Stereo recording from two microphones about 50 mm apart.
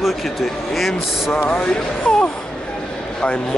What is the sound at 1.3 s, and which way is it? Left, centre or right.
Speech, left.